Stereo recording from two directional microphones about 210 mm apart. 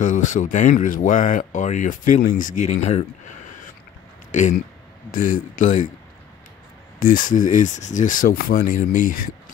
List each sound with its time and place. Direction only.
0.0 s speech: 35° left (ahead or behind)
7.0 s speech: 40° left (ahead or behind)